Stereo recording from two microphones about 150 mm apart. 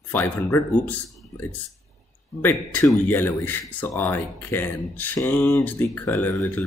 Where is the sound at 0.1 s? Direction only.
15° left (ahead or behind).